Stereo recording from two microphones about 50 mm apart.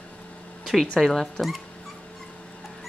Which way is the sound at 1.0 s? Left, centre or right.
Centre.